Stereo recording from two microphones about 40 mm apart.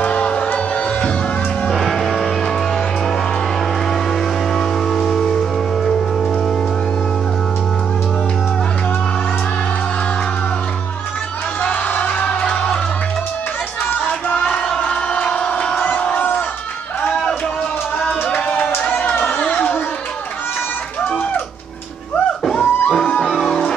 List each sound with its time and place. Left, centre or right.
0.0 s music: left
1.7 s music: centre
4.6 s music: centre
11.6 s music: left
14.3 s battle cry: left
14.8 s a sound: left
15.8 s crowd: left
17.9 s music: left
18.9 s a sound: left
19.2 s chatter: left
22.6 s music: left
22.8 s music: left
23.2 s music: centre